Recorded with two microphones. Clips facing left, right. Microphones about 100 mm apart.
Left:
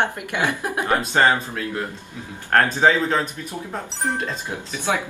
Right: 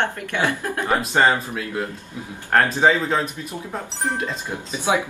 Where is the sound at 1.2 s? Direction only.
5° right (ahead or behind).